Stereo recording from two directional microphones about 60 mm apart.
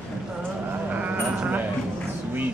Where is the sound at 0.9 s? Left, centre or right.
Right.